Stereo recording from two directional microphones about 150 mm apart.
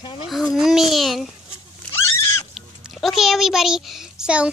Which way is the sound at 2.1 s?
15° left (ahead or behind).